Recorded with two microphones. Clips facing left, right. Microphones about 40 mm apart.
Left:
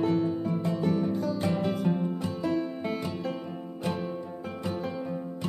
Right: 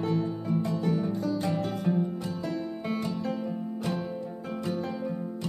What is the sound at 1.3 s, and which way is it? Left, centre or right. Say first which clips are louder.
Music: left 1 dB; centre.